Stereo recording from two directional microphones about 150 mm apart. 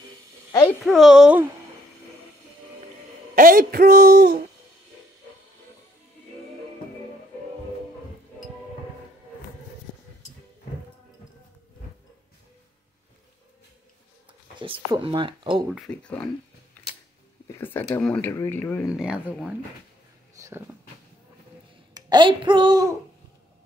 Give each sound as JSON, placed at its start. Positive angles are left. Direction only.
{"t": 0.8, "sound": "speech", "side_deg": 0}
{"t": 3.3, "sound": "speech", "side_deg": -70}
{"t": 14.6, "sound": "a sound", "side_deg": -35}
{"t": 15.9, "sound": "speech", "side_deg": 30}
{"t": 17.6, "sound": "speech", "side_deg": 15}
{"t": 18.9, "sound": "speech", "side_deg": -5}
{"t": 20.3, "sound": "a sound", "side_deg": -15}
{"t": 21.9, "sound": "a child's voice", "side_deg": -30}